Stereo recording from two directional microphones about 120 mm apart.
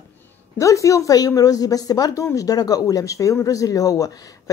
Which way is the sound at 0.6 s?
25° left (ahead or behind).